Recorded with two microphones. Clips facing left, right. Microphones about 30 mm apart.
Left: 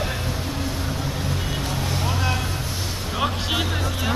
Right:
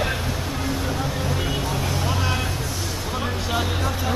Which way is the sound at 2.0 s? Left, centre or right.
Centre.